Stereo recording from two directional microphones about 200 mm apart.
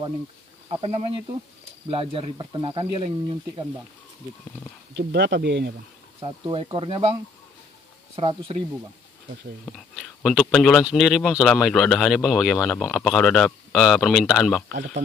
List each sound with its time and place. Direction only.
0.7 s speech: 30° right (ahead or behind)
4.9 s speech: 60° right (ahead or behind)
6.2 s speech: 25° right (ahead or behind)
8.2 s speech: 30° right (ahead or behind)
9.7 s speech: 5° right (ahead or behind)